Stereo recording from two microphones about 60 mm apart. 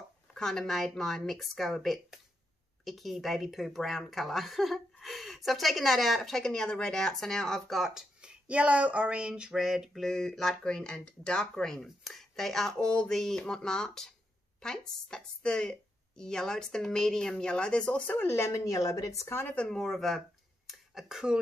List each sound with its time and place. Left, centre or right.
0.3 s speech: centre
7.8 s speech: centre
9.5 s speech: centre; by 18.3 s left
18.3 s a woman's voice: left
19.4 s speech: centre